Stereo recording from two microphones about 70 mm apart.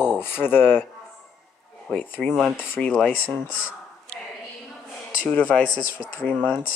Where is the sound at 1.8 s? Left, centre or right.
Left.